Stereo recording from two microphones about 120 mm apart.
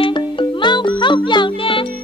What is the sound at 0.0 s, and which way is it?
Music, 45° left (ahead or behind).